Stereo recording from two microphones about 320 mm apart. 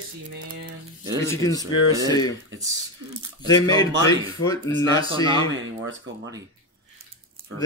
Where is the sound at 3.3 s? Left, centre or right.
Centre.